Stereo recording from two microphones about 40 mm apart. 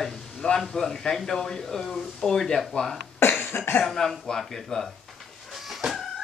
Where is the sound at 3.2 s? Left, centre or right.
Left.